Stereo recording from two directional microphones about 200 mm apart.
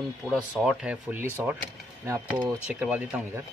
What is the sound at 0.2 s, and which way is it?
Speech, 5° right (ahead or behind).